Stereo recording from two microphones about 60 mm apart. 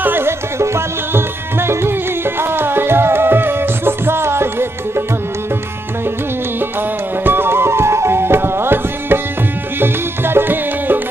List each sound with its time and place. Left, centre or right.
0.0 s music: right
7.2 s music: right